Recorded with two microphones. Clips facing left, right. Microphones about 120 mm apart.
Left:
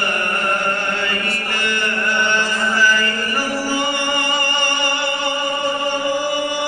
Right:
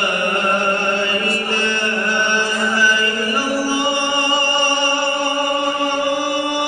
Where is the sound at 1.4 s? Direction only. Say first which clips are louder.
Right 2 dB; 25° right (ahead or behind).